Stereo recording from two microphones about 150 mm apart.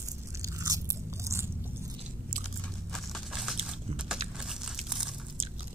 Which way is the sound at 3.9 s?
40° right (ahead or behind).